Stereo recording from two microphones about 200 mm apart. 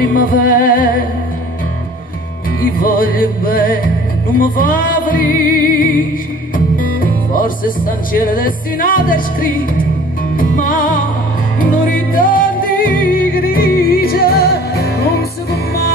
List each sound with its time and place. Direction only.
0.0 s music: 45° left (ahead or behind)
2.6 s music: 45° left (ahead or behind)